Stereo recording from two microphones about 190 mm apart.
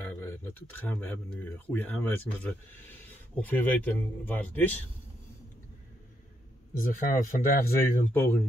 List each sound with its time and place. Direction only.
0.0 s speech: 10° left (ahead or behind)
6.7 s speech: 45° left (ahead or behind)
8.0 s speech: 10° left (ahead or behind)